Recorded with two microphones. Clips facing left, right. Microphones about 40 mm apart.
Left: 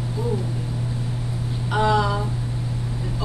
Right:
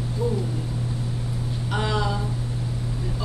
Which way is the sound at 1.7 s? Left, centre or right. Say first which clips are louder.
Left 6 dB; centre.